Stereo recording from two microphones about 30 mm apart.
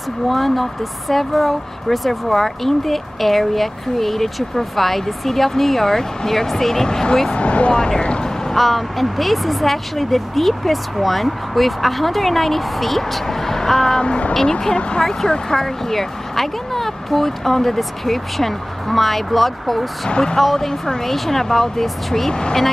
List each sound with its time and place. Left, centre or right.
0.3 s speech: centre
7.3 s speech: left
7.7 s speech: left
8.5 s speech: centre; by 14.8 s left
15.5 s speech: centre
20.1 s speech: left
20.3 s speech: centre
22.3 s speech: left